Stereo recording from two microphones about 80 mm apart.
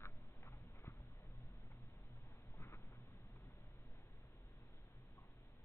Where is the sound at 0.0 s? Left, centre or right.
Left.